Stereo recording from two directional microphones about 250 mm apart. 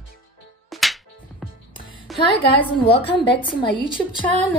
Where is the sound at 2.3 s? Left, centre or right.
Centre.